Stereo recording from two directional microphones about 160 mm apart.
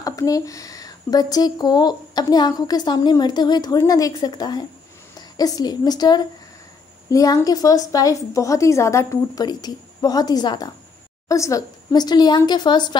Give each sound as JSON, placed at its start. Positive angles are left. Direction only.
{"t": 0.0, "sound": "speech", "side_deg": 20}